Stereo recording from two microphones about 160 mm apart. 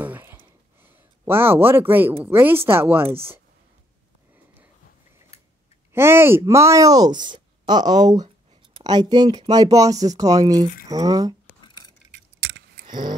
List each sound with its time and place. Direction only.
0.0 s a sound: 10° right (ahead or behind)
0.8 s speech: 15° right (ahead or behind)
5.9 s speech: 15° right (ahead or behind)
12.4 s scissors: 65° right (ahead or behind)